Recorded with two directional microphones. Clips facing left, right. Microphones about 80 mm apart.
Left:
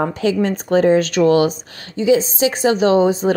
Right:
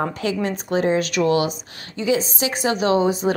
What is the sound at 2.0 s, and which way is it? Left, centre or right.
A woman's voice, left.